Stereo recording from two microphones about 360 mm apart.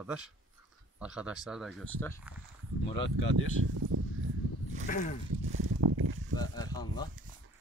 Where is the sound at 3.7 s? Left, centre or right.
Right.